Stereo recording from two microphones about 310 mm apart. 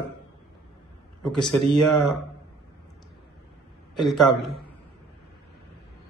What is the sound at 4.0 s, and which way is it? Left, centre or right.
Speech, centre.